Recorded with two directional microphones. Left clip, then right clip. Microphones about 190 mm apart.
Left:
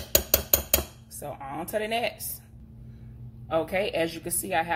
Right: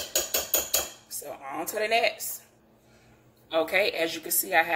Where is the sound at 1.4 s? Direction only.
10° left (ahead or behind).